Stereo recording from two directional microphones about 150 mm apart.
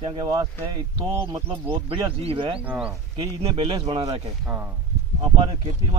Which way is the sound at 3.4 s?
35° right (ahead or behind).